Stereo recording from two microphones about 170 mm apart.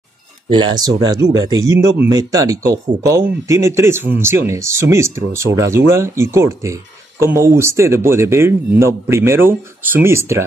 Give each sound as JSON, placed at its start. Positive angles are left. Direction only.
{"t": 0.5, "sound": "speech", "side_deg": -25}